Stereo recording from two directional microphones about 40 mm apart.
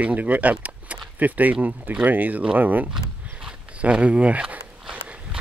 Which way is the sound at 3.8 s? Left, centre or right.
Right.